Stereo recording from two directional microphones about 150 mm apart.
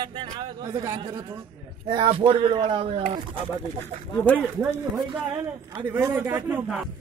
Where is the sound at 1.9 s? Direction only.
35° right (ahead or behind).